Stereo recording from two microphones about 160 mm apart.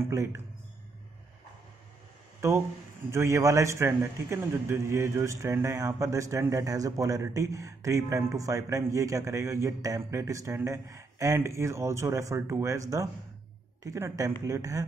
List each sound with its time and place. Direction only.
0.0 s a man's voice: 20° right (ahead or behind)
2.4 s a man's voice: 20° right (ahead or behind)